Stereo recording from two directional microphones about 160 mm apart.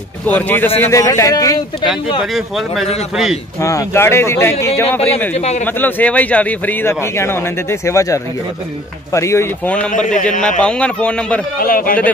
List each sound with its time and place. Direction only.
0.3 s a man's voice: 10° left (ahead or behind)
3.6 s a man's voice: 15° left (ahead or behind)
5.3 s a man's voice: 45° left (ahead or behind)
5.8 s a man's voice: 10° left (ahead or behind)
9.9 s a man's voice: 50° left (ahead or behind)
10.6 s a man's voice: 5° left (ahead or behind)
11.6 s a man's voice: 65° left (ahead or behind)